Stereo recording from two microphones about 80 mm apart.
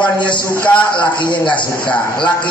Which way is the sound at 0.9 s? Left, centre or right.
Left.